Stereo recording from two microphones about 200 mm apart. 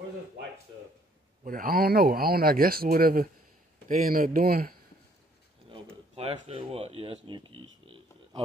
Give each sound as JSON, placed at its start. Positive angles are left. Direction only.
{"t": 1.4, "sound": "speech", "side_deg": -45}
{"t": 6.1, "sound": "speech", "side_deg": -30}
{"t": 7.8, "sound": "a sound", "side_deg": -25}